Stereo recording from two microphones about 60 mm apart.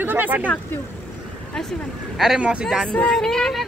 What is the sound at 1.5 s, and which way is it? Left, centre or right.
Speech, centre.